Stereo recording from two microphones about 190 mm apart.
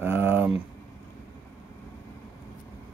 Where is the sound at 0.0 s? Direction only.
10° right (ahead or behind).